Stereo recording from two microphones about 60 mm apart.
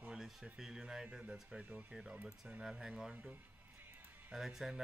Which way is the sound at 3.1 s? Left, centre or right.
Right.